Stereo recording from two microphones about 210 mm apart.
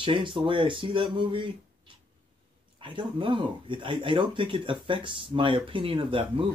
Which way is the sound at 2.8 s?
25° right (ahead or behind).